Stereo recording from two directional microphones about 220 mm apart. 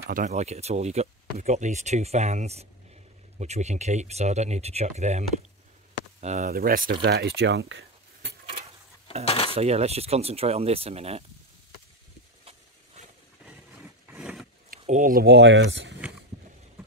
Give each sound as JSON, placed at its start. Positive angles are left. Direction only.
{"t": 0.0, "sound": "speech", "side_deg": -35}
{"t": 6.2, "sound": "speech", "side_deg": -30}
{"t": 9.2, "sound": "cutlery", "side_deg": 25}
{"t": 9.5, "sound": "speech", "side_deg": -30}
{"t": 12.4, "sound": "a sound", "side_deg": -30}
{"t": 14.0, "sound": "a sound", "side_deg": -5}
{"t": 14.8, "sound": "speech", "side_deg": -35}